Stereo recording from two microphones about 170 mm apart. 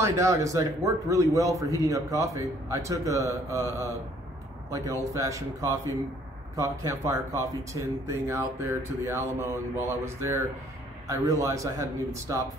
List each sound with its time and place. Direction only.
0.0 s a man's voice: 15° right (ahead or behind)
5.1 s a man's voice: 20° right (ahead or behind)